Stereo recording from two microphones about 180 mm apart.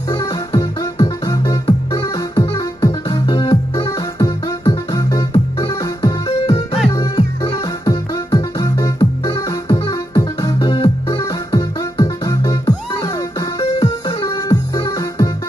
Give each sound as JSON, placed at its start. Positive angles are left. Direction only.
{"t": 0.5, "sound": "music", "side_deg": 30}
{"t": 6.0, "sound": "music", "side_deg": 30}
{"t": 6.9, "sound": "music", "side_deg": 20}